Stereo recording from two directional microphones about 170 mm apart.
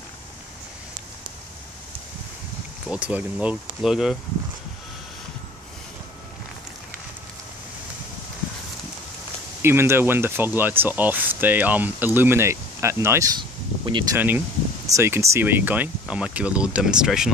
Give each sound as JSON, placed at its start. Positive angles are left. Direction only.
{"t": 2.9, "sound": "speech", "side_deg": -10}
{"t": 9.6, "sound": "speech", "side_deg": -15}
{"t": 13.4, "sound": "a sound", "side_deg": -25}
{"t": 14.1, "sound": "speech", "side_deg": -10}